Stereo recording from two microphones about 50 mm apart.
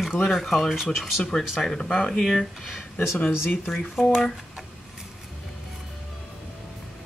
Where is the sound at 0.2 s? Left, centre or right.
Centre.